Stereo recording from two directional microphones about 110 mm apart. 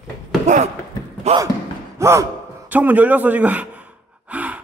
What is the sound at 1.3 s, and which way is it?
Speech, 80° right.